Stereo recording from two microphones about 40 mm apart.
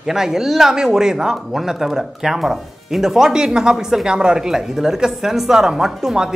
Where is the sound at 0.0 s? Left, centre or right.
Centre.